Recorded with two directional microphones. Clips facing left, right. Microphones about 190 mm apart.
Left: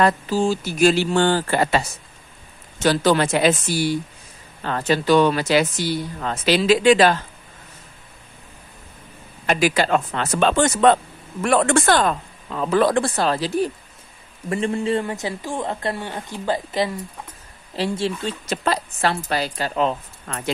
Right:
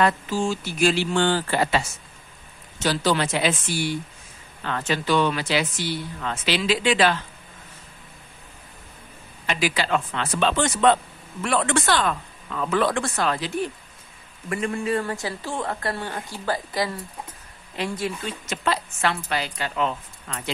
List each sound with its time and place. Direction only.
0.0 s speech: 35° left (ahead or behind)
9.5 s speech: 45° left (ahead or behind)
20.2 s speech: 50° left (ahead or behind)